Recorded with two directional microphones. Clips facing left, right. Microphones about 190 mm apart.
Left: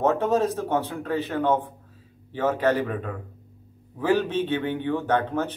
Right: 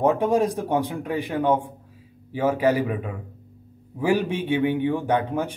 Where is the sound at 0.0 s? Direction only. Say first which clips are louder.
Right 2 dB; 15° right (ahead or behind).